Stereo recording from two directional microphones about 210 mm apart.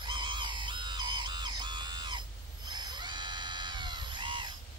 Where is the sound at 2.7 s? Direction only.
20° right (ahead or behind).